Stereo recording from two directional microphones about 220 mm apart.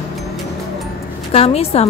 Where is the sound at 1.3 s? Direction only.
30° left (ahead or behind).